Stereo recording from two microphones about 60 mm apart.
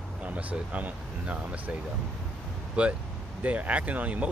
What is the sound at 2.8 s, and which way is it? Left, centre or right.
Speech, right.